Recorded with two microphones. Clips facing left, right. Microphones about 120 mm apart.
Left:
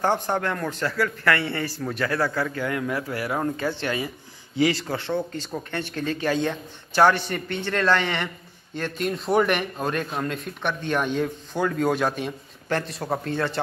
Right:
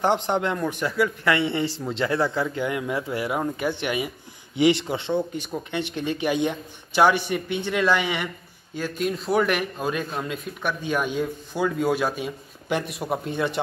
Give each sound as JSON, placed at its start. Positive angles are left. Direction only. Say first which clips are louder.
{"t": 0.0, "sound": "a man's voice", "louder": "right 1 dB", "side_deg": -20}